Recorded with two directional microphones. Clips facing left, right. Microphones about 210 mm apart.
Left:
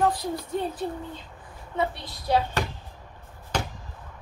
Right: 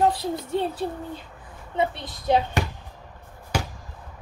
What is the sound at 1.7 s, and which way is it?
Speech, 20° right (ahead or behind).